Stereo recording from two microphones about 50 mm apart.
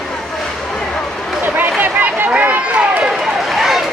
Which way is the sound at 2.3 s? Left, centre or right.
Right.